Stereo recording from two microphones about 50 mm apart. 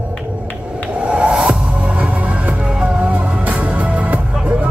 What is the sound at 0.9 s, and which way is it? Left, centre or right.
Music, right.